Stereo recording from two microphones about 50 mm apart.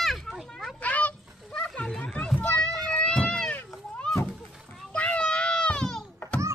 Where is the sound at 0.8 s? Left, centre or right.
Left.